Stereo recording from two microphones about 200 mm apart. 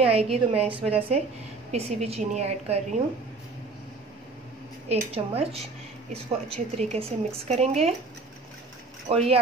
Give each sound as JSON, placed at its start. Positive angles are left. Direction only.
{"t": 0.1, "sound": "a woman's voice", "side_deg": -30}
{"t": 4.8, "sound": "a woman's voice", "side_deg": -30}
{"t": 9.1, "sound": "a woman's voice", "side_deg": -30}